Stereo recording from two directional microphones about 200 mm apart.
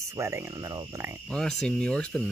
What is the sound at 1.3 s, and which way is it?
Speech, 5° left (ahead or behind).